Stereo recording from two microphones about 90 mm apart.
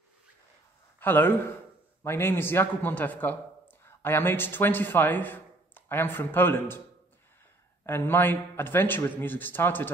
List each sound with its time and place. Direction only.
0.9 s a man's voice: 20° left (ahead or behind)
7.8 s a man's voice: 25° left (ahead or behind)